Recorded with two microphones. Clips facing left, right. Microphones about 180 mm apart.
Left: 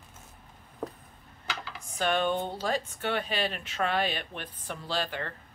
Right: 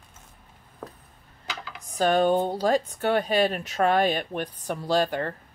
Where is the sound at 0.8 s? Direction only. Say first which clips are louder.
Left 4 dB; 10° left (ahead or behind).